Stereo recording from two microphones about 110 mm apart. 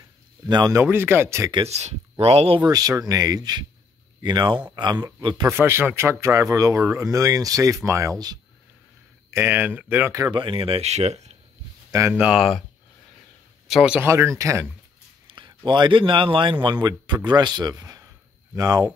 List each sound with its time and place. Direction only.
0.5 s speech: 40° right (ahead or behind)
0.8 s speech: 20° right (ahead or behind)
1.7 s speech: 75° right (ahead or behind)
2.6 s speech: 35° right (ahead or behind)
5.5 s speech: 20° right (ahead or behind)
9.3 s speech: 20° right (ahead or behind)
10.3 s speech: 50° right (ahead or behind); by 11.3 s 90° right
12.1 s speech: 10° right (ahead or behind)
12.4 s speech: centre (ahead or behind)
13.7 s speech: 5° right (ahead or behind)
14.0 s speech: 25° right (ahead or behind)
15.2 s a man's voice: 50° right (ahead or behind)